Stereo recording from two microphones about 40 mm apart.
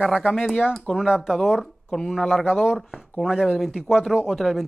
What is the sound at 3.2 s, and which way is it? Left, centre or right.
Speech, centre.